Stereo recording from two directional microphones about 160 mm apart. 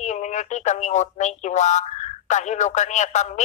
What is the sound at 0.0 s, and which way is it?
Speech, 50° left (ahead or behind).